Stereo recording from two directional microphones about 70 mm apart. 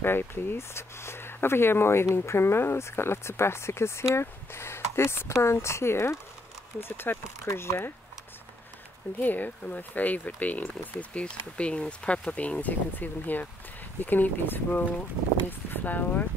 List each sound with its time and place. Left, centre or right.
0.0 s speech: left
9.2 s speech: left